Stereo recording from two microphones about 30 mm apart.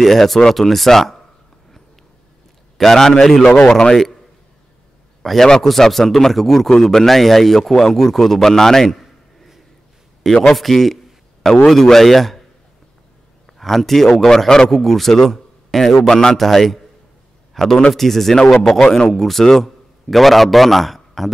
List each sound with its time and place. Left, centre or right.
0.0 s a man's voice: centre
2.8 s a man's voice: centre
5.2 s a man's voice: centre
10.4 s a man's voice: centre
13.5 s a man's voice: centre
18.3 s speech: left
19.0 s a man's voice: centre
20.1 s a man's voice: centre